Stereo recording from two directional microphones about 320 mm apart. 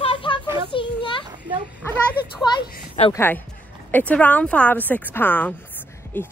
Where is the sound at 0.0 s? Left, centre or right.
Centre.